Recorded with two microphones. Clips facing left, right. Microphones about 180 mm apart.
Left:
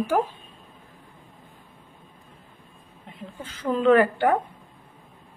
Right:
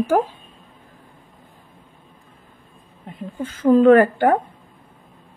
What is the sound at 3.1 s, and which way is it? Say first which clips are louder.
A woman's voice: right 10 dB; 45° right (ahead or behind).